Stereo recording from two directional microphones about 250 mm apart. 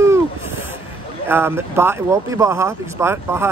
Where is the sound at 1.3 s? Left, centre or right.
Centre.